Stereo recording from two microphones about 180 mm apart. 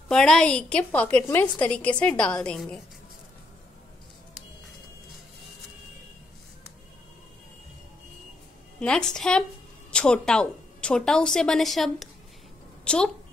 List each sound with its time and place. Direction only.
0.1 s a woman's voice: 5° left (ahead or behind)
8.7 s a woman's voice: 5° left (ahead or behind)